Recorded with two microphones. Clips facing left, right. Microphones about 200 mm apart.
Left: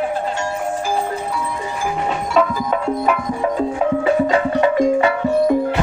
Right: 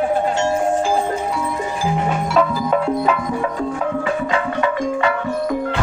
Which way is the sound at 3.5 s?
30° left (ahead or behind).